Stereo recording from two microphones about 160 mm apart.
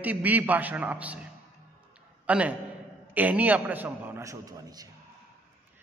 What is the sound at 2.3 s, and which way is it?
A man's voice, 10° right (ahead or behind).